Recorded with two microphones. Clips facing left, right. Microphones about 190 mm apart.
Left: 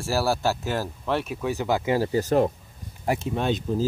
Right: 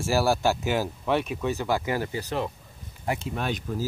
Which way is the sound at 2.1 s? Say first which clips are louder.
Left 9 dB; 45° left (ahead or behind).